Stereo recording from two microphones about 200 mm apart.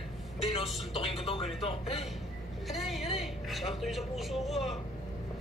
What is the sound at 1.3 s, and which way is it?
Speech, 30° left (ahead or behind).